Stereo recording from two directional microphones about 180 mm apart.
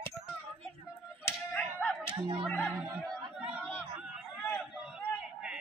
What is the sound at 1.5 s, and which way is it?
Whip, 5° left (ahead or behind).